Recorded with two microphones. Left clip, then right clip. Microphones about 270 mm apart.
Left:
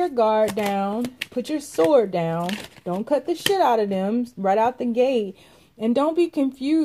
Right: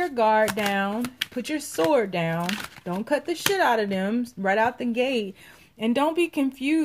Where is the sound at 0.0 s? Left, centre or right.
Right.